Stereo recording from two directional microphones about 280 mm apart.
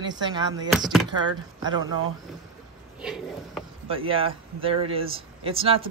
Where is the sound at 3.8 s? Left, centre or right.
Centre.